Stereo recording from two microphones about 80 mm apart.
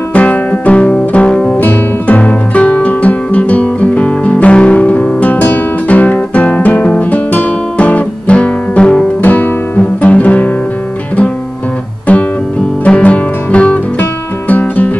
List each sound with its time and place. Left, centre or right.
0.1 s music: centre
12.1 s guitar: centre
12.8 s music: centre